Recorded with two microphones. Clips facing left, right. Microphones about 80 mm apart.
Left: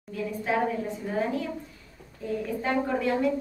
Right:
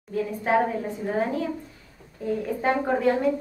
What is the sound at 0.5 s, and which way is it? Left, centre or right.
A woman's voice, right.